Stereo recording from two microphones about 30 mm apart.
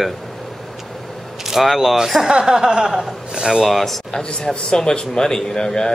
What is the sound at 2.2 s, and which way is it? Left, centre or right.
Chuckle, right.